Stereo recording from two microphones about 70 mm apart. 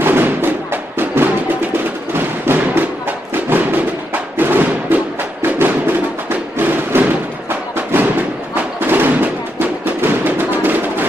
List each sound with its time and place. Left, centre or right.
0.0 s music: right